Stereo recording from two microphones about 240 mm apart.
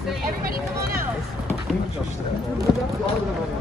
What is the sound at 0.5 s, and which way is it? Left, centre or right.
Vehicle, right.